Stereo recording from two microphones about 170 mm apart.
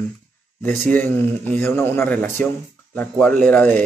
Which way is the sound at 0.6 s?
10° left (ahead or behind).